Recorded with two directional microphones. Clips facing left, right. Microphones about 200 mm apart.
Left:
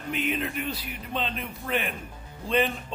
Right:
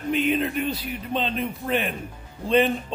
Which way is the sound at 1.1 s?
25° right (ahead or behind).